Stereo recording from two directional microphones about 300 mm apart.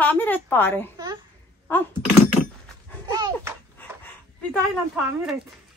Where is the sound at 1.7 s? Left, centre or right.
Centre.